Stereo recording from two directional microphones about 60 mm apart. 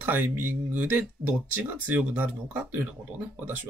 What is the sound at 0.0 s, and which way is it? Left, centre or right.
Speech, right.